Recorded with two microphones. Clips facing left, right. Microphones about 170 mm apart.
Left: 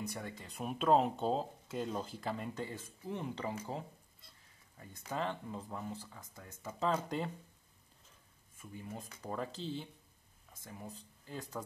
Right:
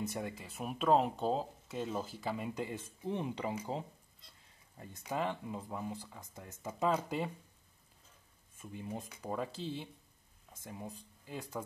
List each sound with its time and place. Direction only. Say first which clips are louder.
0.0 s speech: right 4 dB; 25° right (ahead or behind)
0.3 s speech: even; 5° right (ahead or behind)
5.0 s speech: right 2 dB; 10° right (ahead or behind)
8.5 s speech: right 3 dB; 20° right (ahead or behind)